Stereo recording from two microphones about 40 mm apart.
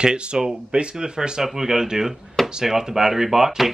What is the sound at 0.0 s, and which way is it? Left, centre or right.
Speech, right.